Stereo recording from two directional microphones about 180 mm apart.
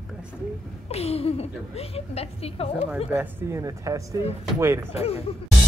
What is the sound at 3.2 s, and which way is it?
Speech, 15° right (ahead or behind).